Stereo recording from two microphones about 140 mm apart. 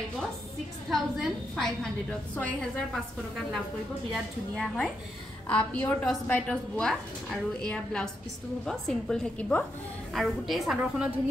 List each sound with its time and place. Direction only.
0.8 s a woman's voice: centre (ahead or behind)
4.1 s a woman's voice: centre (ahead or behind)